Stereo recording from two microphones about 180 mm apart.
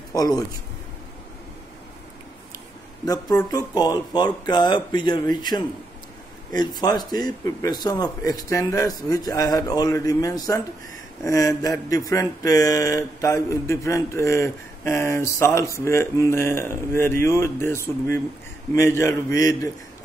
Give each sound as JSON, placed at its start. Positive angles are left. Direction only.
{"t": 0.1, "sound": "a man's voice", "side_deg": 20}
{"t": 3.1, "sound": "a man's voice", "side_deg": 20}
{"t": 11.2, "sound": "a sound", "side_deg": 20}